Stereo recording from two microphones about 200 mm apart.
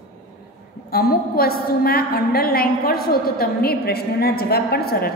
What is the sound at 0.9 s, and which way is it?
A woman's voice, 50° left (ahead or behind).